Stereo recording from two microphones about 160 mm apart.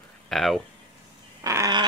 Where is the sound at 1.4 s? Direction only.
20° right (ahead or behind).